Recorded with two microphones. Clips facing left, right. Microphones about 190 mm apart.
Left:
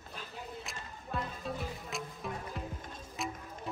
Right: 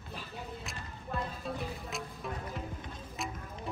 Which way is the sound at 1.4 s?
Centre (ahead or behind).